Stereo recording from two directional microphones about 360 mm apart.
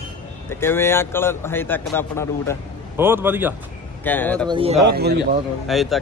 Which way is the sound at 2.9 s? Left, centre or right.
Centre.